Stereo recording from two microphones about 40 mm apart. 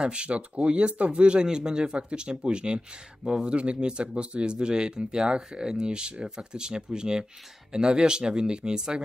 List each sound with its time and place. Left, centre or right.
0.0 s speech: right